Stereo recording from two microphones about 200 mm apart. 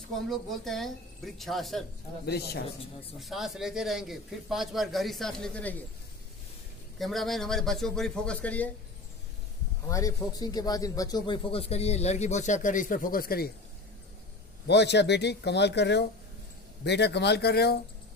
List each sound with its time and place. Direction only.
0.1 s a man's voice: centre (ahead or behind)
2.2 s a man's voice: 55° left (ahead or behind)
3.2 s a man's voice: centre (ahead or behind)
7.0 s a man's voice: centre (ahead or behind)
9.8 s speech: 15° left (ahead or behind); by 13.5 s 50° left (ahead or behind)
14.7 s speech: 60° left (ahead or behind)